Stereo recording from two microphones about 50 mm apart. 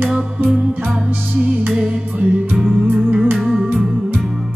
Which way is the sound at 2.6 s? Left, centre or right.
Centre.